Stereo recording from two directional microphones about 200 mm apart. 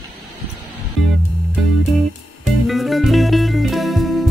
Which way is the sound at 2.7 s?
Centre (ahead or behind).